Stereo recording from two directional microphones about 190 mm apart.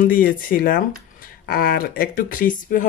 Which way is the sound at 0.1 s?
50° left (ahead or behind).